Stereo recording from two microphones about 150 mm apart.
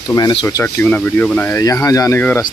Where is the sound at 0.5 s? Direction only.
20° left (ahead or behind).